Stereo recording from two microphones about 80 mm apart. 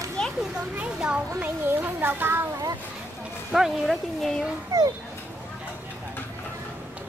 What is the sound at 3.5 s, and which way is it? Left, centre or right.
Speech, centre.